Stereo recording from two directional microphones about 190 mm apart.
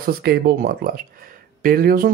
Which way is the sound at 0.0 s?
55° right (ahead or behind).